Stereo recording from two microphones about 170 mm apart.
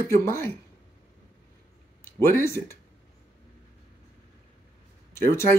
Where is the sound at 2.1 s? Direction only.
15° left (ahead or behind).